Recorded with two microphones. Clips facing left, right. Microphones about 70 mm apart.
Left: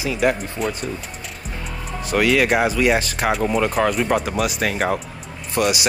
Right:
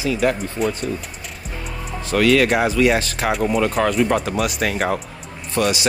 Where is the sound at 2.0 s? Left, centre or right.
Centre.